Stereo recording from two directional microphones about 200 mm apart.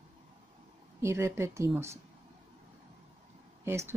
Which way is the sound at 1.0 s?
15° right (ahead or behind).